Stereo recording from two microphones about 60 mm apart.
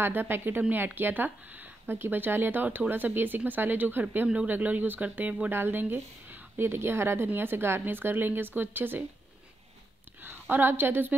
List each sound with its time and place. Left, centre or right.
0.0 s a woman's voice: right
10.5 s a woman's voice: right